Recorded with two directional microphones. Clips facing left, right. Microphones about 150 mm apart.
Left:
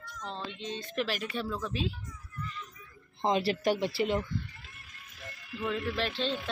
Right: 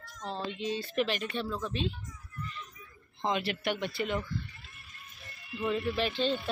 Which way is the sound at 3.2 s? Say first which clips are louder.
Left 4 dB; 35° left (ahead or behind).